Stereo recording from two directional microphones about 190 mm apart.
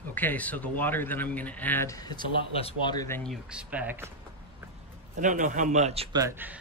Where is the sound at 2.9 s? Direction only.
15° left (ahead or behind).